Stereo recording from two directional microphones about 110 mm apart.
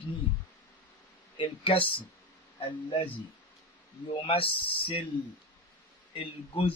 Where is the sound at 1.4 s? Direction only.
50° left (ahead or behind).